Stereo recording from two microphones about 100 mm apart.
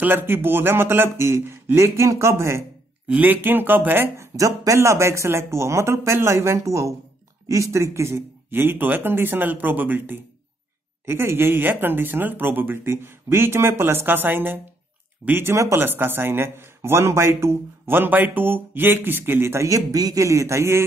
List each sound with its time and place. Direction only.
0.0 s speech: 20° right (ahead or behind)
4.4 s speech: 35° right (ahead or behind)